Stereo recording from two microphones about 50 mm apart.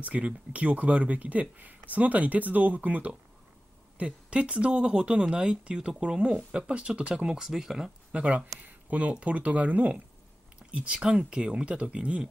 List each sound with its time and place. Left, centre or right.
0.0 s speech: right
7.2 s speech: centre
8.1 s speech: right
10.7 s speech: centre